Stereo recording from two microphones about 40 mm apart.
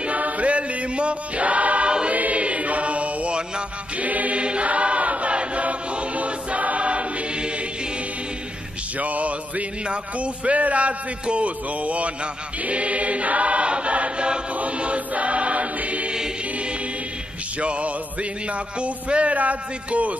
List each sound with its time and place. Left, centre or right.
0.0 s choir: right
2.1 s choir: right
3.9 s chant: right
4.4 s choir: right
8.9 s music: right
17.6 s music: right
18.5 s a man's voice: right